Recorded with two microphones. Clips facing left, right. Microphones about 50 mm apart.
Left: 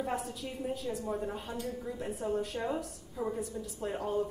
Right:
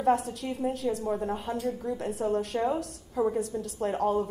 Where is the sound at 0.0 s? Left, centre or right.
Right.